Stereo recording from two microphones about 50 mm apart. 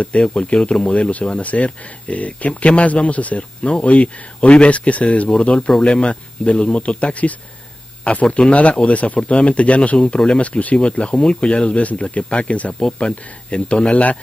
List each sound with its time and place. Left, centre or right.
0.0 s speech: left